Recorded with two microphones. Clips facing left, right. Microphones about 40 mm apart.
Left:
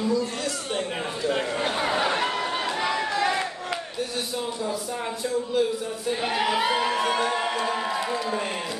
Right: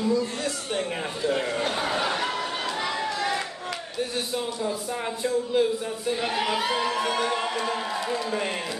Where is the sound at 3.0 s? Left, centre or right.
Left.